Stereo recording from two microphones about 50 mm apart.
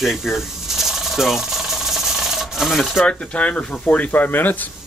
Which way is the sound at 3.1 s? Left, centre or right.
Left.